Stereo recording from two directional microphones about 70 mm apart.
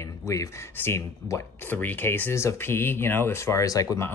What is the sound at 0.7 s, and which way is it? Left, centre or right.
A man's voice, left.